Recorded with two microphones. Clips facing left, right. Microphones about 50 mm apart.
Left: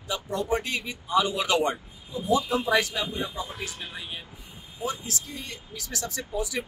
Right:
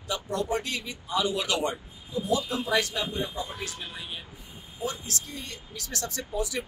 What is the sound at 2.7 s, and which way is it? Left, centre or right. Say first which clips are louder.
Speech: even; centre.